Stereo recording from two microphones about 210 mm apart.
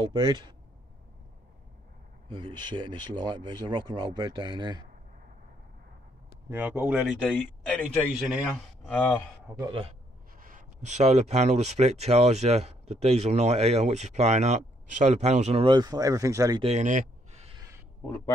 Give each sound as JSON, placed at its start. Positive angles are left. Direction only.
{"t": 0.0, "sound": "speech", "side_deg": -25}
{"t": 2.2, "sound": "speech", "side_deg": -20}
{"t": 6.5, "sound": "speech", "side_deg": -10}
{"t": 7.2, "sound": "speech", "side_deg": 5}
{"t": 9.6, "sound": "speech", "side_deg": -25}
{"t": 10.3, "sound": "speech", "side_deg": -40}
{"t": 16.6, "sound": "a sound", "side_deg": -35}
{"t": 18.0, "sound": "speech", "side_deg": 10}